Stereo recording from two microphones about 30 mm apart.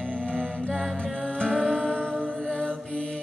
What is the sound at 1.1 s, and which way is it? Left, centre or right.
Music, left.